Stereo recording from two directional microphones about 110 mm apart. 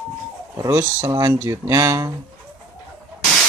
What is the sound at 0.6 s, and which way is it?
Speech, 30° right (ahead or behind).